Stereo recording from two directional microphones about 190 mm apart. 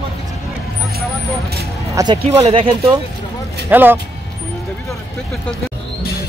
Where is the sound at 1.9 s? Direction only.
25° right (ahead or behind).